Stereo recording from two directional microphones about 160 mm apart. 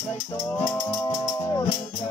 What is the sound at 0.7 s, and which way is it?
Music, 25° left (ahead or behind).